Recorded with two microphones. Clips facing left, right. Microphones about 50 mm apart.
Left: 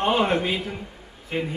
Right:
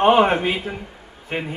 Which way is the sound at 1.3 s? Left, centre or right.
Right.